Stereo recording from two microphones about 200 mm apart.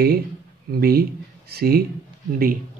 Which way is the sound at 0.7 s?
50° right (ahead or behind).